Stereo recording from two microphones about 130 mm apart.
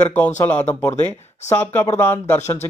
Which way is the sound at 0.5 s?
15° left (ahead or behind).